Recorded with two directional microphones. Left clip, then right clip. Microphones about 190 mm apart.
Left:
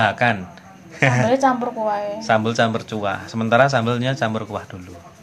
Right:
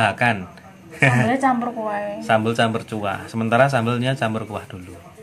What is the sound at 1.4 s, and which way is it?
Speech, 30° left (ahead or behind).